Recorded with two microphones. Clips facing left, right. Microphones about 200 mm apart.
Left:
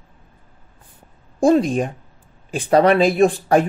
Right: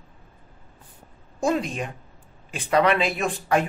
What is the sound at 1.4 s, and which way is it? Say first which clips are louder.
Speech: left 9 dB; 35° left (ahead or behind).